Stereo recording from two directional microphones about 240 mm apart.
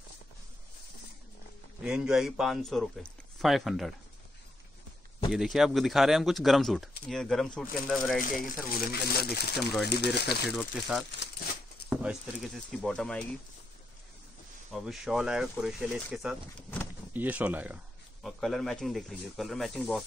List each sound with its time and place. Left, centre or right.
1.8 s speech: centre
5.3 s speech: centre
8.4 s speech: left
10.5 s speech: centre
14.7 s speech: centre